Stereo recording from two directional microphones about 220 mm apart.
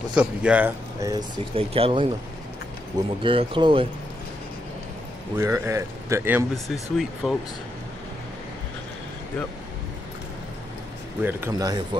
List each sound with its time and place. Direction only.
0.1 s speech: 5° right (ahead or behind); by 2.0 s 25° right (ahead or behind)
3.2 s speech: 25° right (ahead or behind)
5.4 s speech: 10° right (ahead or behind)
11.2 s speech: 15° right (ahead or behind)